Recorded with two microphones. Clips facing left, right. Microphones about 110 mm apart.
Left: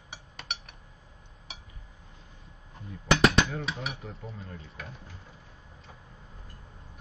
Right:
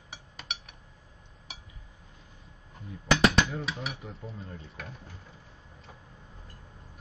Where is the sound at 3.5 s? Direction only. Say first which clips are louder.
Even; centre (ahead or behind).